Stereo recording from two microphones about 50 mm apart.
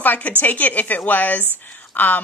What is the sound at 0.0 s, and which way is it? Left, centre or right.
A woman's voice, left.